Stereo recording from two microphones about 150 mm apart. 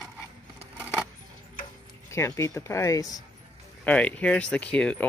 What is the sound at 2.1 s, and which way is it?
Speech, 20° left (ahead or behind).